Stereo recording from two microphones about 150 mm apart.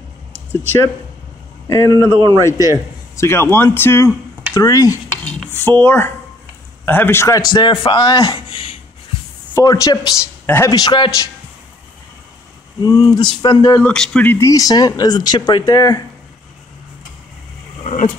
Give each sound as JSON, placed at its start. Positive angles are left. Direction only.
{"t": 0.3, "sound": "a sound", "side_deg": -15}
{"t": 1.7, "sound": "speech", "side_deg": 20}
{"t": 4.6, "sound": "stir", "side_deg": 25}
{"t": 5.5, "sound": "speech", "side_deg": 15}
{"t": 9.5, "sound": "speech", "side_deg": 20}
{"t": 12.8, "sound": "speech", "side_deg": 20}
{"t": 13.8, "sound": "speech", "side_deg": 5}